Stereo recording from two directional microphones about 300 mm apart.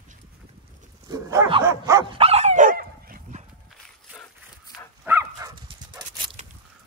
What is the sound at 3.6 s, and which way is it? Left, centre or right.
Walk, centre.